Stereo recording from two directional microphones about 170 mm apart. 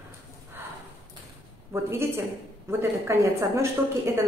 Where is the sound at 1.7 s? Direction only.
15° right (ahead or behind).